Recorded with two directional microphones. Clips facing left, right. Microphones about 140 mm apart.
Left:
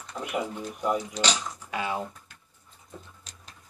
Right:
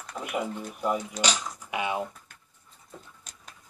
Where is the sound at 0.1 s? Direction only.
Centre (ahead or behind).